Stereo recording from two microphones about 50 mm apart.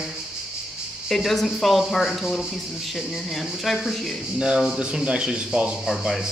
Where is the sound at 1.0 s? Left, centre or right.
Centre.